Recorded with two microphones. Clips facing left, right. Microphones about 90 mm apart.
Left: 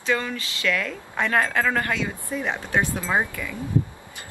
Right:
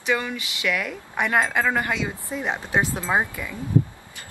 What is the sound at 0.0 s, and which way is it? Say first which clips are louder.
A woman's voice: even; 15° right (ahead or behind).